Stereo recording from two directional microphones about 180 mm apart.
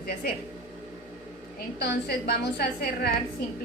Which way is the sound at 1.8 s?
60° left (ahead or behind).